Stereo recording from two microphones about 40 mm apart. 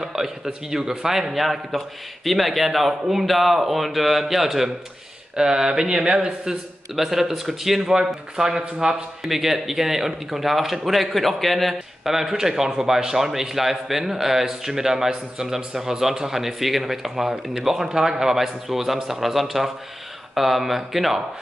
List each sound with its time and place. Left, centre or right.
0.0 s speech: centre
5.3 s speech: centre
7.0 s speech: centre
12.0 s speech: centre